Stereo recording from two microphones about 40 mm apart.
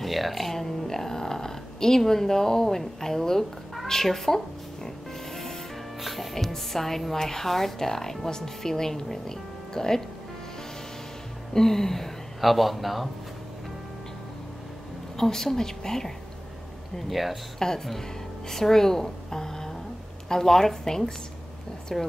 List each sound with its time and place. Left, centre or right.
0.0 s a woman's voice: centre
4.8 s music: centre
5.9 s music: centre
6.3 s a woman's voice: centre
11.5 s speech: centre
15.1 s a woman's voice: centre
17.1 s speech: centre
17.6 s a woman's voice: centre